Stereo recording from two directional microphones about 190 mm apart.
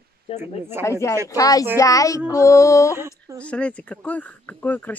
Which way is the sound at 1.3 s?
20° left (ahead or behind).